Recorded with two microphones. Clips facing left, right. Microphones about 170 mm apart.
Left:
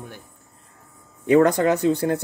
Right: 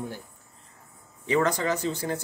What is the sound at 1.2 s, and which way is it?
Speech, 55° left (ahead or behind).